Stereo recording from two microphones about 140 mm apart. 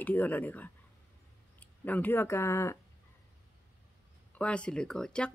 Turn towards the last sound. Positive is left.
turn(degrees=5)  # may be behind; listen again after turning